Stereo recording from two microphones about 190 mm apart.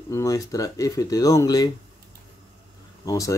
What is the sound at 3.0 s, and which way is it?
Speech, 15° left (ahead or behind).